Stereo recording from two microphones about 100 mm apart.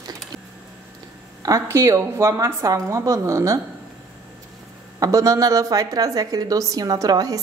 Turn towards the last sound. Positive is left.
turn(degrees=-40)  # may be behind; listen again after turning